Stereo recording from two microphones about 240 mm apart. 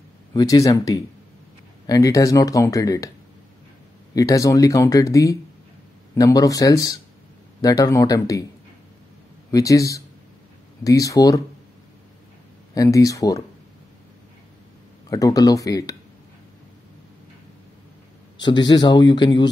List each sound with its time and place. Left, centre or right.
0.3 s speech: centre
4.1 s speech: centre
9.5 s speech: centre
12.7 s speech: centre
15.0 s speech: centre
18.4 s speech: centre